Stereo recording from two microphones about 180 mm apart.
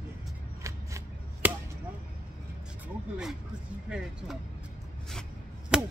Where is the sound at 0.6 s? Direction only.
15° right (ahead or behind).